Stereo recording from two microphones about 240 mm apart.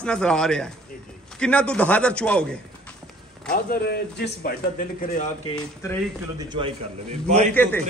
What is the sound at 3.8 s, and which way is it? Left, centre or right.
Speech, left.